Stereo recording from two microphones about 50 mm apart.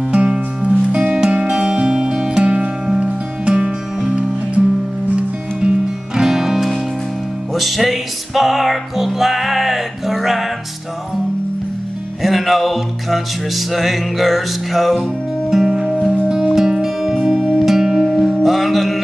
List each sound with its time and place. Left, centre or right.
0.1 s music: centre
2.4 s music: right
5.6 s music: centre
12.2 s music: centre
15.9 s music: centre
16.3 s music: centre
18.0 s music: centre